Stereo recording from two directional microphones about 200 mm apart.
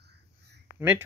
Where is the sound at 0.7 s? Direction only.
10° right (ahead or behind).